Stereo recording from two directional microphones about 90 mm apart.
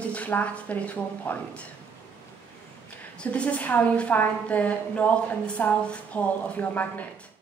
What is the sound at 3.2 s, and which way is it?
A woman's voice, 15° left (ahead or behind).